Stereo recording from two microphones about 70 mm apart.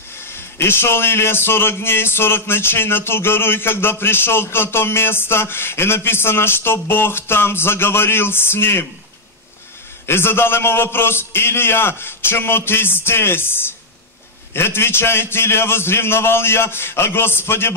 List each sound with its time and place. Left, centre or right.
0.2 s a man's voice: left
10.0 s a man's voice: left